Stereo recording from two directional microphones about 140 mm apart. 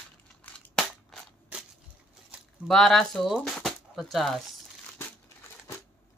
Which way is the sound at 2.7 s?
Centre (ahead or behind).